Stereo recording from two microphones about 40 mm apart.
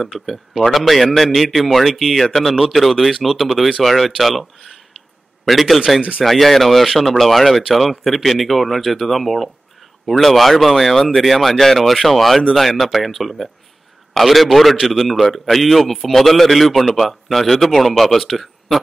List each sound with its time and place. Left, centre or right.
0.0 s a man's voice: centre
5.9 s speech: right
6.2 s a man's voice: centre